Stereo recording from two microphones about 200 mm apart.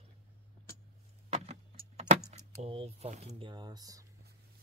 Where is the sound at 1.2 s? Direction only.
30° right (ahead or behind).